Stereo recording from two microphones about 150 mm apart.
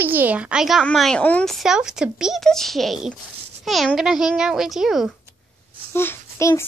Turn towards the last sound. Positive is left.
turn(degrees=20)  # may be behind; listen again after turning